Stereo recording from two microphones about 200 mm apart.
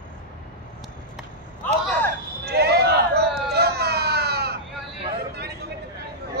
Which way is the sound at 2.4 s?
50° right (ahead or behind).